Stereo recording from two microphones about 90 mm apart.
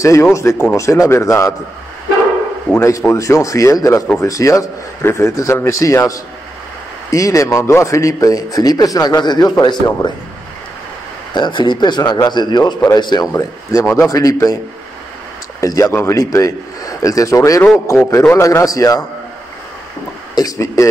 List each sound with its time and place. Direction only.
0.0 s a man's voice: 35° left (ahead or behind)
2.8 s a man's voice: 35° left (ahead or behind); by 10.1 s 55° left (ahead or behind)
11.3 s a man's voice: 60° left (ahead or behind)
13.4 s a man's voice: 40° left (ahead or behind)
15.6 s a man's voice: 40° left (ahead or behind)
15.9 s a man's voice: 30° left (ahead or behind)
20.3 s a man's voice: 40° left (ahead or behind)